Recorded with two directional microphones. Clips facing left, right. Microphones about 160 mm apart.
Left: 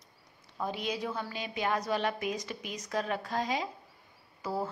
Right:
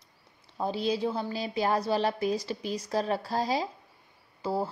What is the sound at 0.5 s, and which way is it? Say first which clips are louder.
A woman's voice: right 6 dB; 30° right (ahead or behind).